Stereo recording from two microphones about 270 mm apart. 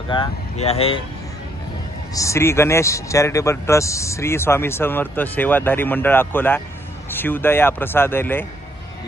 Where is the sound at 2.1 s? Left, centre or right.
Centre.